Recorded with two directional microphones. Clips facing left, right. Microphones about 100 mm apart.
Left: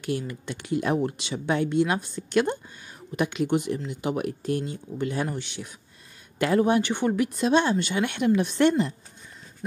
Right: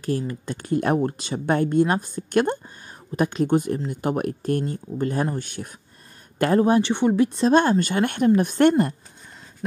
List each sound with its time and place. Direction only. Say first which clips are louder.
0.0 s speech: right 4 dB; 35° right (ahead or behind)
3.2 s speech: right 4 dB; 40° right (ahead or behind)
6.6 s speech: right 4 dB; 30° right (ahead or behind)
7.5 s speech: right 3 dB; 45° right (ahead or behind)